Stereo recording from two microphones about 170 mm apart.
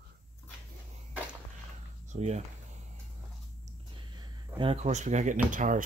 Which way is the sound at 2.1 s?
40° right (ahead or behind).